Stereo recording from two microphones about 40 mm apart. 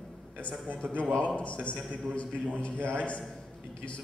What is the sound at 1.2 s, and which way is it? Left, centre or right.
A man's voice, left.